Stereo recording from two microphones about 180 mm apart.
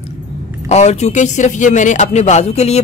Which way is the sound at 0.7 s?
40° left (ahead or behind).